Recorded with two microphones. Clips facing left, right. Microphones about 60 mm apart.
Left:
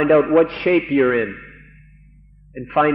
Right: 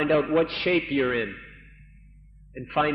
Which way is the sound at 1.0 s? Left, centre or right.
Left.